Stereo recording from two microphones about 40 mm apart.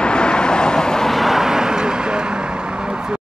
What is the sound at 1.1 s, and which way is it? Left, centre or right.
Vehicle, centre.